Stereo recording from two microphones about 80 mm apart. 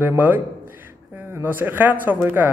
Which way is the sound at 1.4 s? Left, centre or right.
Right.